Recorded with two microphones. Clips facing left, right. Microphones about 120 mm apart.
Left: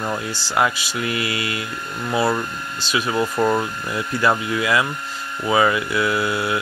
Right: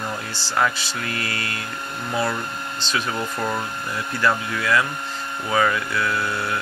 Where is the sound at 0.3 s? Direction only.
15° left (ahead or behind).